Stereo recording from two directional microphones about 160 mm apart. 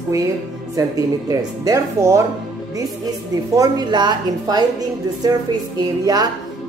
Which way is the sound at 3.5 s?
25° right (ahead or behind).